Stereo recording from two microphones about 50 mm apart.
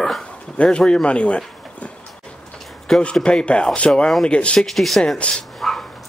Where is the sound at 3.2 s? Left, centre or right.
Centre.